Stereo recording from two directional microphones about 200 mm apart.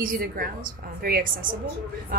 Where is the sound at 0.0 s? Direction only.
45° right (ahead or behind).